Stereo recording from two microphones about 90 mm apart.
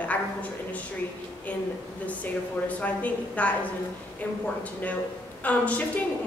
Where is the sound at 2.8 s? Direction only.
15° left (ahead or behind).